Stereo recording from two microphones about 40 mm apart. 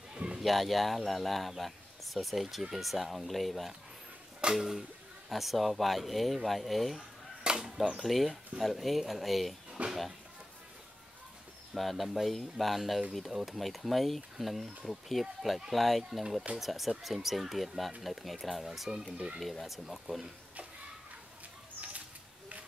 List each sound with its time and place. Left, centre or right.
0.1 s a sound: centre
0.4 s speech: centre
7.4 s chop: centre
8.0 s speech: centre
11.7 s speech: centre
19.1 s speech: right
19.6 s speech: centre